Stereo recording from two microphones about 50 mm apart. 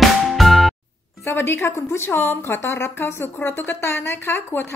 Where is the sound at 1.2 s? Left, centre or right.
Left.